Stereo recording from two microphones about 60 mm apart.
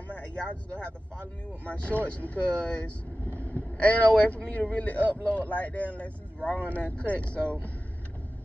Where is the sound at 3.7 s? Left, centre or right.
Left.